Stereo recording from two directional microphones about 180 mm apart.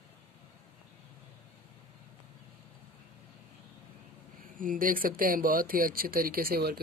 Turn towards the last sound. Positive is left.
turn(degrees=-60)  # may be behind; listen again after turning